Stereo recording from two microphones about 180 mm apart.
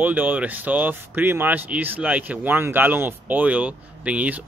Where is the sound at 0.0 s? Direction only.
10° right (ahead or behind).